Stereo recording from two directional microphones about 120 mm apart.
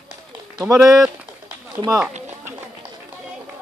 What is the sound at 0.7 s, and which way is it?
Speech, 5° right (ahead or behind).